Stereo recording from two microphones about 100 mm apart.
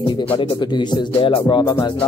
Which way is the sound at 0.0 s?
60° left (ahead or behind).